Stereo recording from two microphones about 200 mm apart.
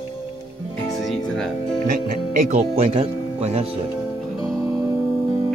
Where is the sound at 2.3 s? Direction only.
35° right (ahead or behind).